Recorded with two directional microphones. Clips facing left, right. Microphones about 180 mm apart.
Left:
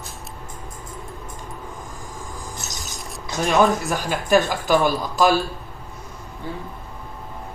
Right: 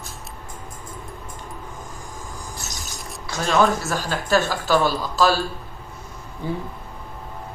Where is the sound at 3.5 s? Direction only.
15° left (ahead or behind).